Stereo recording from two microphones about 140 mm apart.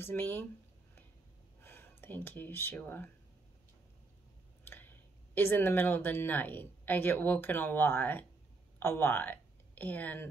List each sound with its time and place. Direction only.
0.0 s speech: 15° left (ahead or behind)
1.6 s speech: 15° left (ahead or behind)
4.6 s speech: 15° left (ahead or behind)